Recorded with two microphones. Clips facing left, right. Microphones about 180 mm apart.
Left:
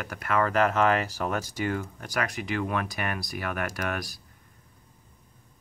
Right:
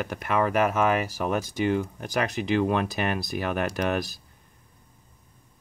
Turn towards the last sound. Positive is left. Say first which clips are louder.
# right 6 dB
turn(degrees=-25)  # may be behind; listen again after turning